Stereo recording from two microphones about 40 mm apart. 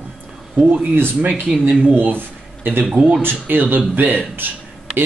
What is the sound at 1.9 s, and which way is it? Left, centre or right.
Speech, right.